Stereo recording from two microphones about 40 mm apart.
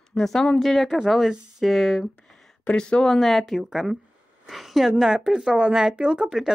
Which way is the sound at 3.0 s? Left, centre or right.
Centre.